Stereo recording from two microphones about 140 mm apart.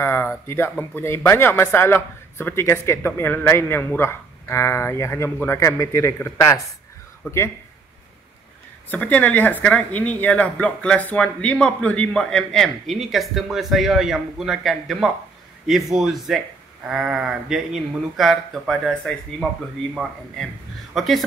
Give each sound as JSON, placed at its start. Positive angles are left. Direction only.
{"t": 0.0, "sound": "speech", "side_deg": 15}
{"t": 8.9, "sound": "speech", "side_deg": 10}